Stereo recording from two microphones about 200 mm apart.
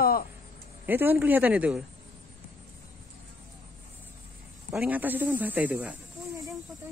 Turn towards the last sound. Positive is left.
turn(degrees=-10)  # may be behind; listen again after turning